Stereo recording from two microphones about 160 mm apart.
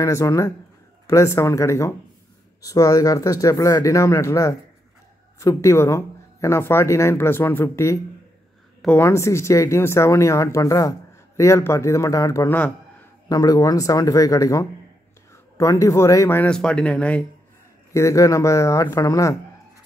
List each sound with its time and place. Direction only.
0.0 s speech: 20° left (ahead or behind)
17.9 s speech: 20° left (ahead or behind)